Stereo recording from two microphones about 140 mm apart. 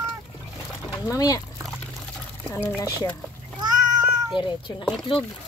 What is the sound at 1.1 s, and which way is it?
Speech, 25° left (ahead or behind).